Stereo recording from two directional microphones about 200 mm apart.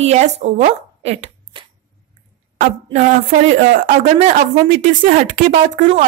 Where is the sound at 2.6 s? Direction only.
40° right (ahead or behind).